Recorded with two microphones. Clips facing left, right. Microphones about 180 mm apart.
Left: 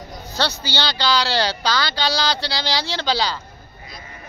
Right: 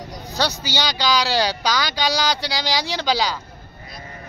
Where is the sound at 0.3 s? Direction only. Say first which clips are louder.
Even; 15° right (ahead or behind).